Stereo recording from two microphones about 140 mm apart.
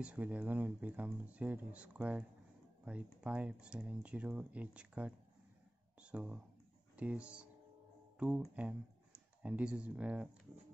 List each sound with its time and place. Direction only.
0.0 s speech: 10° right (ahead or behind)
8.5 s speech: 10° right (ahead or behind)